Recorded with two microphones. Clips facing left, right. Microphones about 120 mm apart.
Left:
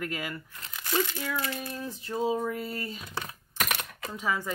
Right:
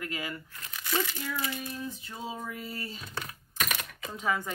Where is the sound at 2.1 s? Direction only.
45° left (ahead or behind).